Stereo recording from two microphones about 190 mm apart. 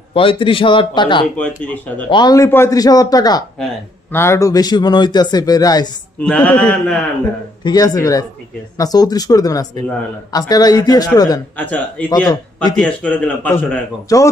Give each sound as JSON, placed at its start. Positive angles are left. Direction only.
{"t": 0.1, "sound": "a man's voice", "side_deg": 30}
{"t": 1.3, "sound": "a man's voice", "side_deg": 5}
{"t": 2.0, "sound": "a man's voice", "side_deg": 25}
{"t": 6.2, "sound": "a man's voice", "side_deg": 5}
{"t": 7.6, "sound": "a man's voice", "side_deg": 20}
{"t": 11.5, "sound": "a man's voice", "side_deg": 10}